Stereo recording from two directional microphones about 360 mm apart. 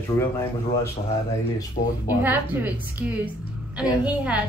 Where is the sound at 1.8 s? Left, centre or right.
Left.